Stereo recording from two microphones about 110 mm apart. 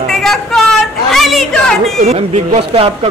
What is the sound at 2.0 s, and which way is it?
Speech, 75° right (ahead or behind).